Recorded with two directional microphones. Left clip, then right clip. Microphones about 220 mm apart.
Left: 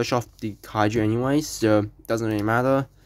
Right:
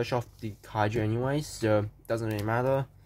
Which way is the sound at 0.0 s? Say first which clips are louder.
Left 6 dB; 35° left (ahead or behind).